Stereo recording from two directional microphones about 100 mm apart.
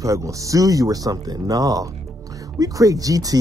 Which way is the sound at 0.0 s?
35° right (ahead or behind).